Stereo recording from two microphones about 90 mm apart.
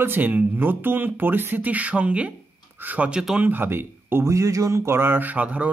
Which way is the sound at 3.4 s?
25° right (ahead or behind).